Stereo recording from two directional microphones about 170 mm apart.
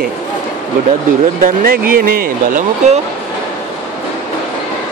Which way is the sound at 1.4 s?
60° right (ahead or behind).